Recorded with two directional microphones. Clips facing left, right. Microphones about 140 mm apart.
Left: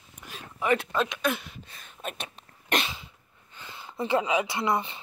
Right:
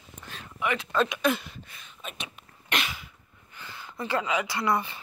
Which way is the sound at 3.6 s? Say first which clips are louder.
Left 3 dB; 25° left (ahead or behind).